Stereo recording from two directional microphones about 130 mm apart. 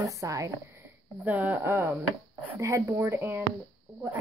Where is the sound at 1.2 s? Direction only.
10° right (ahead or behind).